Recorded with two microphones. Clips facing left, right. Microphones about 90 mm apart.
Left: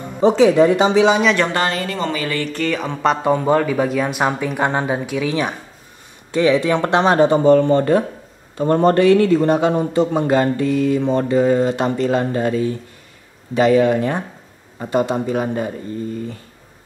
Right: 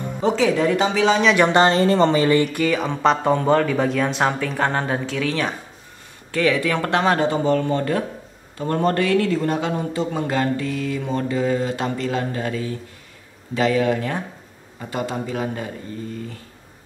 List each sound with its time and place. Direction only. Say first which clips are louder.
0.2 s a man's voice: left 7 dB; 20° left (ahead or behind)
1.4 s a man's voice: right 4 dB; 25° right (ahead or behind); by 11.7 s 35° left (ahead or behind)
11.7 s a man's voice: left 6 dB; 25° left (ahead or behind)
13.7 s a man's voice: left 5 dB; 25° left (ahead or behind)